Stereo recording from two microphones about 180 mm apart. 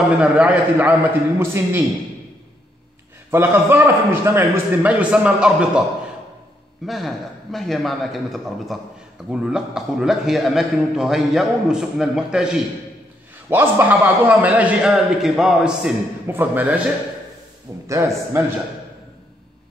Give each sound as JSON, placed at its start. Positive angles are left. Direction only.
{"t": 0.2, "sound": "a man's voice", "side_deg": -5}
{"t": 3.3, "sound": "a man's voice", "side_deg": -15}
{"t": 6.9, "sound": "a man's voice", "side_deg": 0}
{"t": 17.8, "sound": "a man's voice", "side_deg": -15}